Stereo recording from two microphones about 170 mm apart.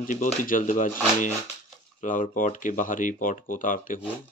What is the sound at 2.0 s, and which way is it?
Speech, 50° left (ahead or behind).